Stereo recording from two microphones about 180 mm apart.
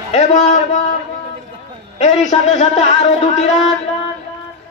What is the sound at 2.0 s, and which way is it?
Speech, 40° left (ahead or behind).